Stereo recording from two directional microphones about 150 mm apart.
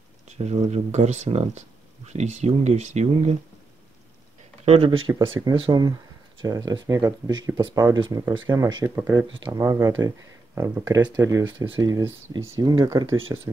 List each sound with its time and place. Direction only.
0.3 s a sound: 45° right (ahead or behind)
0.7 s speech: 45° right (ahead or behind)
4.6 s speech: 40° right (ahead or behind)
8.8 s speech: 15° right (ahead or behind)